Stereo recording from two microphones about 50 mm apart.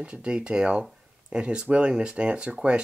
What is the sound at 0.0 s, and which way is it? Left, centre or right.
Speech, right.